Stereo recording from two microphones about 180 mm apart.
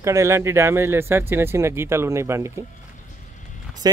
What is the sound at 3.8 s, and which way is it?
Speech, 20° right (ahead or behind).